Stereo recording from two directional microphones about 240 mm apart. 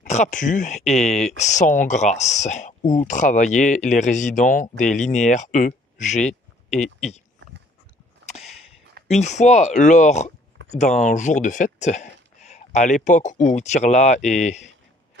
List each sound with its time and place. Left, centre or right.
0.0 s speech: left
9.0 s speech: left